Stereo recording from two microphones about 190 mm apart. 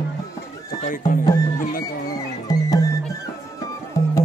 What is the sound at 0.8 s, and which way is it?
Music, 45° left (ahead or behind).